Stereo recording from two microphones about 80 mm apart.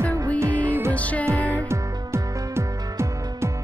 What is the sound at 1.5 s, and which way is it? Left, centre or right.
Music, right.